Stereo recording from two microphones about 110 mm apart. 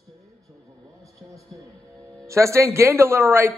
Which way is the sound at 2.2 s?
25° right (ahead or behind).